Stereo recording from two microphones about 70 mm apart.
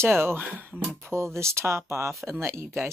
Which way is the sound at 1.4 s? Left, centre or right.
Right.